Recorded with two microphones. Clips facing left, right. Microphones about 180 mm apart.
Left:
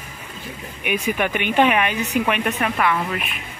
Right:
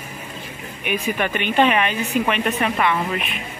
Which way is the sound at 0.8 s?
10° left (ahead or behind).